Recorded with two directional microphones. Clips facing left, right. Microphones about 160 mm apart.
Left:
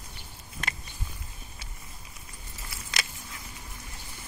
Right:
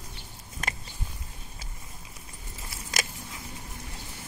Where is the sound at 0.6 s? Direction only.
45° right (ahead or behind).